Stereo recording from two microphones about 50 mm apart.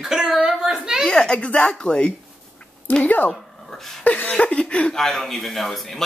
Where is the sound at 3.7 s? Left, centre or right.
Centre.